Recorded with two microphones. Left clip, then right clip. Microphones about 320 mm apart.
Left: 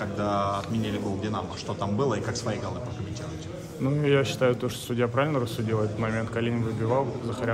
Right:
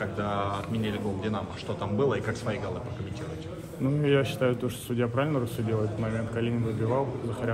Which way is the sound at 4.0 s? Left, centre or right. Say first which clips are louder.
Left 2 dB; centre.